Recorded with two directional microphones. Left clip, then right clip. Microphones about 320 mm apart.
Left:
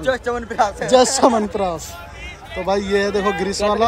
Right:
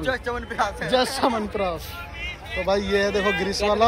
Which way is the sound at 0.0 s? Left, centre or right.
Left.